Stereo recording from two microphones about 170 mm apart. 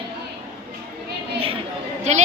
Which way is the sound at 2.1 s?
40° right (ahead or behind).